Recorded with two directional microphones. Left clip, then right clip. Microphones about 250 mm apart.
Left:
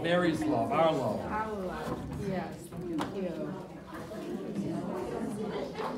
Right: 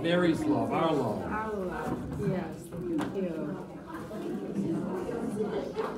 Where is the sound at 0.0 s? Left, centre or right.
Centre.